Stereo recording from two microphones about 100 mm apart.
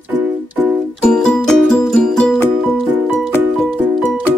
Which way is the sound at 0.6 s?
Centre (ahead or behind).